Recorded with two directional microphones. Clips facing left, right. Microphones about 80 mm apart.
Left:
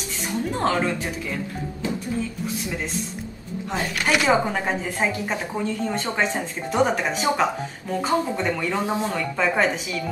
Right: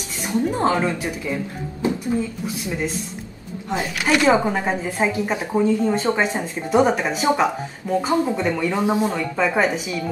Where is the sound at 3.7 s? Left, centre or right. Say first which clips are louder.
Right 3 dB; centre.